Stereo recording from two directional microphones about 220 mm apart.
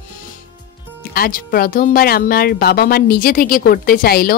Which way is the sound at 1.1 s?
40° left (ahead or behind).